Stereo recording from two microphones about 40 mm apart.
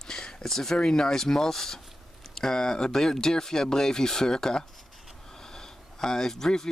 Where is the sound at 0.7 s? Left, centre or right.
Left.